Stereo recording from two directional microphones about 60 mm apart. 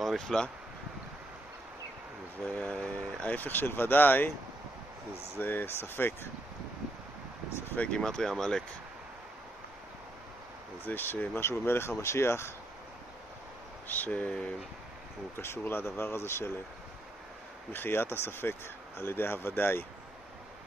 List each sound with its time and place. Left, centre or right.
0.0 s speech: centre
2.4 s speech: left
3.3 s speech: left
5.4 s speech: left
7.7 s speech: left
8.0 s speech: centre
10.9 s speech: left
13.8 s speech: left
15.3 s speech: left
17.7 s speech: left